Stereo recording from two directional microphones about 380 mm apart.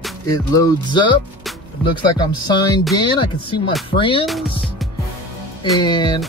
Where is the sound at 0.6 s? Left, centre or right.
Centre.